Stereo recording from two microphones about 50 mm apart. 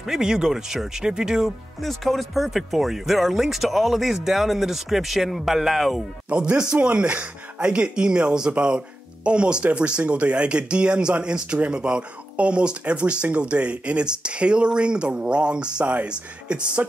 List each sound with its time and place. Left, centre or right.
0.0 s speech: centre
1.8 s speech: centre
6.2 s speech: right
15.8 s speech: right
16.1 s speech: right